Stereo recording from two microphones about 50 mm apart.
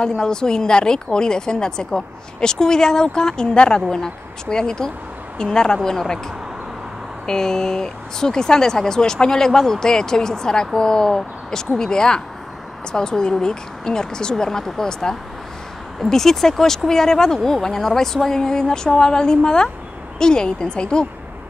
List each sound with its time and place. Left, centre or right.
0.0 s speech: centre
7.2 s speech: centre